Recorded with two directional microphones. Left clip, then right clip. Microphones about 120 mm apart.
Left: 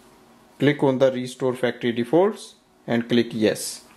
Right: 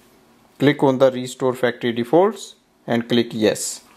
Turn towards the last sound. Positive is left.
turn(degrees=-30)  # may be behind; listen again after turning